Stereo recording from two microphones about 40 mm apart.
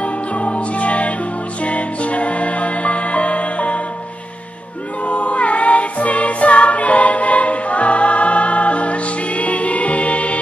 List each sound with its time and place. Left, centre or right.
0.0 s music: left
5.0 s music: left